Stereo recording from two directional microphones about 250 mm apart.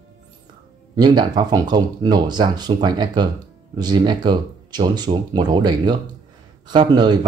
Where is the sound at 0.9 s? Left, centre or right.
Centre.